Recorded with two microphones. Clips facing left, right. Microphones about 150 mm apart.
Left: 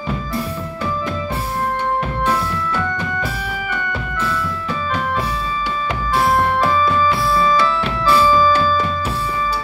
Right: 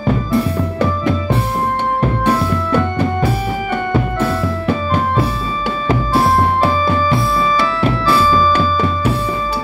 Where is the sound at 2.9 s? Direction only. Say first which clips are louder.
Right 7 dB; 50° right (ahead or behind); by 6.8 s 35° right (ahead or behind).